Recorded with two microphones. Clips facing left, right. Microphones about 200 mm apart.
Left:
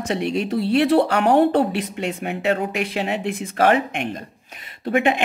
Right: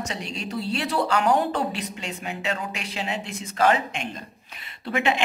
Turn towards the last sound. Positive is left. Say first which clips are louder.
# left 5 dB
turn(degrees=50)  # may be behind; listen again after turning